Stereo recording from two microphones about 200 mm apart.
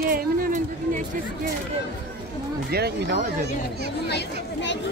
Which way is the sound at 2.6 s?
50° right (ahead or behind).